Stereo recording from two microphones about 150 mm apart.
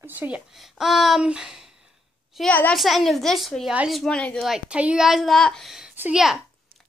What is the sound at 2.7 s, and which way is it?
A child's voice, centre (ahead or behind).